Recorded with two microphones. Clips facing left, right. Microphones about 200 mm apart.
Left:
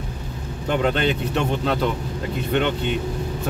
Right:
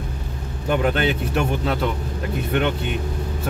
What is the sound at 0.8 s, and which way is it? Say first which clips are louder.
Speech: even; 5° right (ahead or behind).